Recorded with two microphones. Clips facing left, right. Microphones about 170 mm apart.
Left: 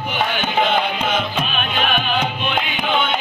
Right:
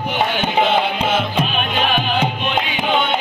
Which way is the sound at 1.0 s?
10° right (ahead or behind).